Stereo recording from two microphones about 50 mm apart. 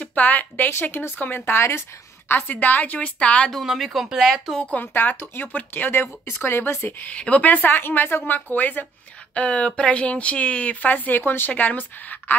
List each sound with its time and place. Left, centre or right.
0.0 s speech: left
0.7 s speech: left
2.4 s speech: left
3.5 s speech: centre
4.7 s speech: left
7.1 s speech: left
9.3 s speech: left